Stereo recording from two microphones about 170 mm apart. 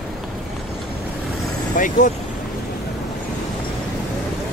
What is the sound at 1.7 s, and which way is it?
Speech, 50° left (ahead or behind).